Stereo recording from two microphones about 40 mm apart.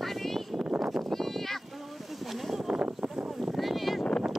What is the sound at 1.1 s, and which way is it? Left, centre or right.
Sheep, centre.